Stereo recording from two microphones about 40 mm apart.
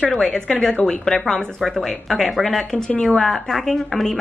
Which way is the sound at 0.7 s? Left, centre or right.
Left.